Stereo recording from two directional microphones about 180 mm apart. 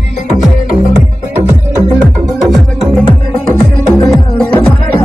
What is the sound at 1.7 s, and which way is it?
Music, 15° right (ahead or behind).